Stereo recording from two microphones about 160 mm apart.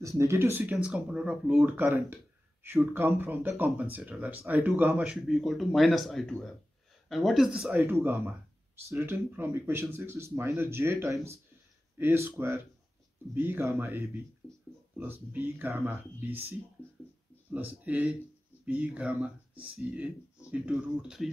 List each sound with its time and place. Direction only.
0.0 s speech: 20° right (ahead or behind); by 7.7 s centre (ahead or behind)
7.7 s speech: 15° right (ahead or behind)
14.4 s a sound: 5° left (ahead or behind)
15.0 s speech: 15° right (ahead or behind)
17.8 s speech: 10° right (ahead or behind)